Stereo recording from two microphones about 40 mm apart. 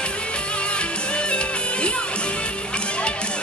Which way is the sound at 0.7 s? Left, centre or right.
Left.